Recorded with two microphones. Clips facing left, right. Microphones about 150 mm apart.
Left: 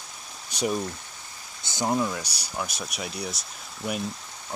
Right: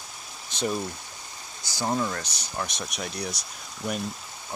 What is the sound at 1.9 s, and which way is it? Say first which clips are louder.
Speech: left 1 dB; 10° left (ahead or behind).